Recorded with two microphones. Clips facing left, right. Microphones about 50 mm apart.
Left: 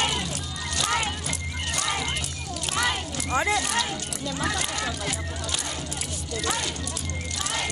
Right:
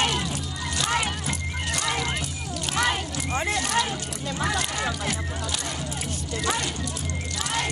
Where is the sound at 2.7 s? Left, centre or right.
Centre.